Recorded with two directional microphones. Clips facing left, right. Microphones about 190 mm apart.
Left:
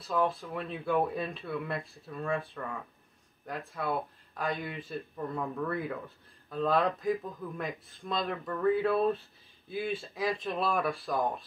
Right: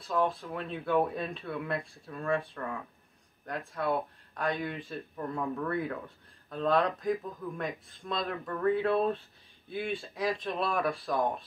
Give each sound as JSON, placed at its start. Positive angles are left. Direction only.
{"t": 0.0, "sound": "speech", "side_deg": 0}